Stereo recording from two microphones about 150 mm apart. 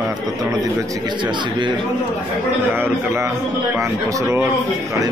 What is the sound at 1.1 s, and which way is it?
Speech, 30° right (ahead or behind).